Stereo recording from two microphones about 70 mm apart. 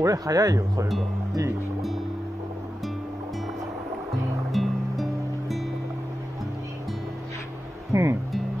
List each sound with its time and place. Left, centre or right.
0.0 s speech: right
4.1 s music: centre
7.9 s music: right